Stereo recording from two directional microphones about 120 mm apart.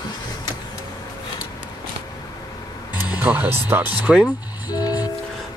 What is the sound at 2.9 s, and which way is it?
Speech, 15° right (ahead or behind).